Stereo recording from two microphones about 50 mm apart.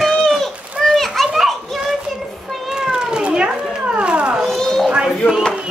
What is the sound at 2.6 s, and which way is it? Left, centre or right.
Cat, centre.